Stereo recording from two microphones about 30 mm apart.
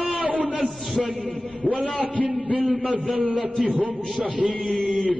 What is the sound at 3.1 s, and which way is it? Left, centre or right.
A man's voice, right.